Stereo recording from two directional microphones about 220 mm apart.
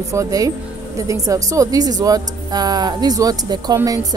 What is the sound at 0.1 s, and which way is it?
A woman's voice, 15° right (ahead or behind).